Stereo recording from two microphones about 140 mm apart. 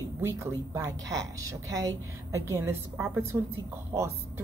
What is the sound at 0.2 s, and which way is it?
A woman's voice, 20° right (ahead or behind).